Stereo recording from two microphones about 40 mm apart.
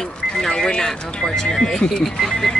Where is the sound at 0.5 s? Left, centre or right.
Centre.